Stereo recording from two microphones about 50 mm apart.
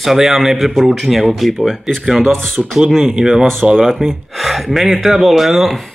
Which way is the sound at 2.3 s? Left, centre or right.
Centre.